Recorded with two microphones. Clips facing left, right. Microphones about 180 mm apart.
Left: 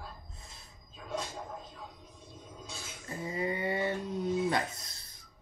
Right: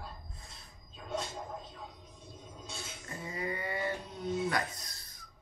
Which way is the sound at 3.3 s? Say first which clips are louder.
Left 5 dB; 25° left (ahead or behind).